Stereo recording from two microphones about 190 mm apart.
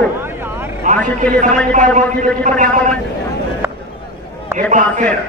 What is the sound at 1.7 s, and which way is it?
A man's voice, 40° right (ahead or behind).